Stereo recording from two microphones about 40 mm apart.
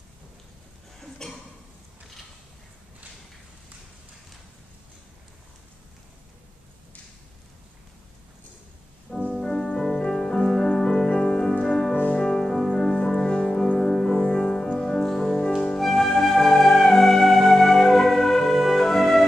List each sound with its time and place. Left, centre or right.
1.2 s a sound: centre
9.4 s music: centre
11.9 s music: left
12.2 s music: centre